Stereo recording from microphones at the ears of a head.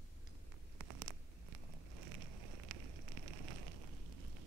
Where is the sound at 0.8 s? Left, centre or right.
Right.